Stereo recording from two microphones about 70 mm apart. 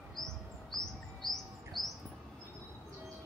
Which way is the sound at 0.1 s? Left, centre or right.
Centre.